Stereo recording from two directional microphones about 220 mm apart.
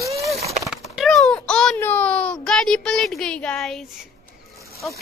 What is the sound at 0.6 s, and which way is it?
Speech, centre (ahead or behind).